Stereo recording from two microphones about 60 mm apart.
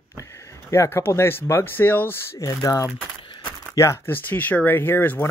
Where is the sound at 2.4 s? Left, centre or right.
Left.